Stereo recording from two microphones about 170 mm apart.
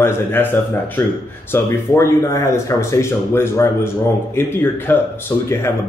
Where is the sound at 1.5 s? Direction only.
15° left (ahead or behind).